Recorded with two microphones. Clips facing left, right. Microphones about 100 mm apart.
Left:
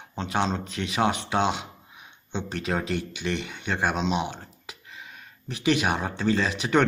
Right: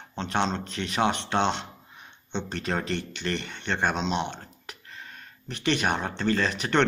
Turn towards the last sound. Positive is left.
turn(degrees=5)  # may be behind; listen again after turning